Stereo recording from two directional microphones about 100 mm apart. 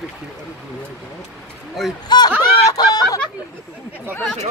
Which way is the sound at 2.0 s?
45° left (ahead or behind).